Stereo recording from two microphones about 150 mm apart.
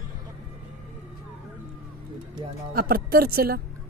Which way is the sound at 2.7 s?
75° right (ahead or behind).